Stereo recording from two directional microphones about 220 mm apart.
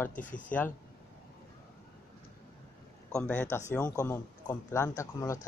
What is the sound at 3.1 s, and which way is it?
Speech, 5° left (ahead or behind).